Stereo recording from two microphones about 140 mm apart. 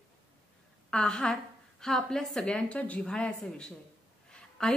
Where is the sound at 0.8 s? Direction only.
5° left (ahead or behind).